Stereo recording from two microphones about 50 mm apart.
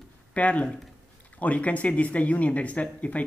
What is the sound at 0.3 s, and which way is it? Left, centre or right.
A woman's voice, left.